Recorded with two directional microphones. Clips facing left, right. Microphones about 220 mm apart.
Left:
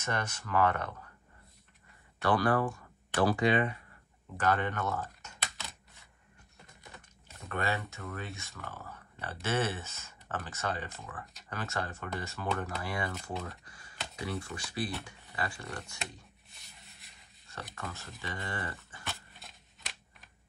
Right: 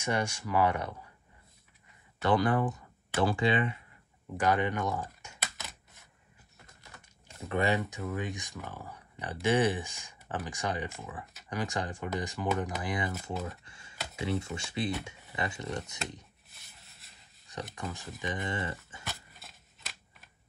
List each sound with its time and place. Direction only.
0.0 s speech: 10° right (ahead or behind)
2.2 s speech: 20° right (ahead or behind)
4.4 s typing: 10° right (ahead or behind)
7.4 s speech: 15° right (ahead or behind)
13.7 s computer keyboard: 25° right (ahead or behind)
14.1 s speech: 25° right (ahead or behind)
16.5 s rub: centre (ahead or behind)
17.5 s a sound: 15° right (ahead or behind)
18.2 s speech: 20° right (ahead or behind)
19.0 s scissors: centre (ahead or behind)